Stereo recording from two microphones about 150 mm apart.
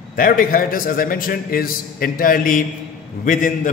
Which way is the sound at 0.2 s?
70° left (ahead or behind).